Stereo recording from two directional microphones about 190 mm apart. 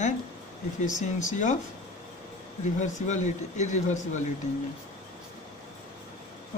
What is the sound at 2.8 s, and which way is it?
Speech, 40° left (ahead or behind).